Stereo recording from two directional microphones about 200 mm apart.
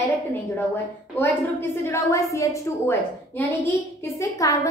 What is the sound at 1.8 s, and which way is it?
A woman's voice, 15° left (ahead or behind).